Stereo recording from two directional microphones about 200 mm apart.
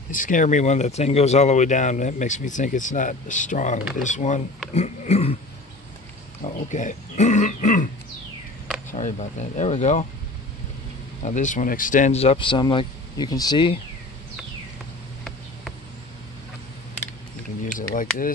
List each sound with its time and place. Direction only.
0.1 s speech: 40° left (ahead or behind)
6.4 s speech: 40° left (ahead or behind)
8.9 s speech: 35° left (ahead or behind)
11.2 s speech: 40° left (ahead or behind); by 13.7 s 20° left (ahead or behind)
17.7 s speech: 45° left (ahead or behind)